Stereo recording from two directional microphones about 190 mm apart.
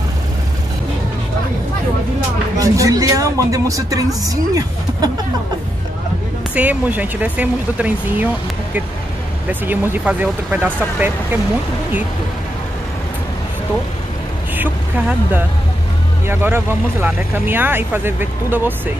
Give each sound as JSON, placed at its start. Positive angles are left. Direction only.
{"t": 2.6, "sound": "speech", "side_deg": -15}
{"t": 6.5, "sound": "speech", "side_deg": -10}
{"t": 9.5, "sound": "speech", "side_deg": -10}
{"t": 14.5, "sound": "speech", "side_deg": -10}